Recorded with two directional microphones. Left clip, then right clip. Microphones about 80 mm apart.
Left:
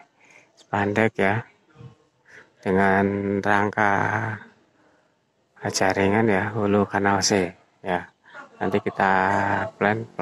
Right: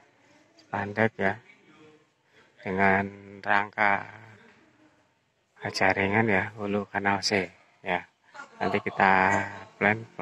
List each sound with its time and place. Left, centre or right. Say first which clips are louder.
0.7 s speech: left 5 dB; left
2.6 s speech: left 4 dB; left
5.9 s speech: left 4 dB; left